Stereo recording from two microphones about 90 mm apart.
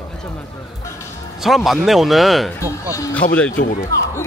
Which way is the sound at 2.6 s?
40° left (ahead or behind).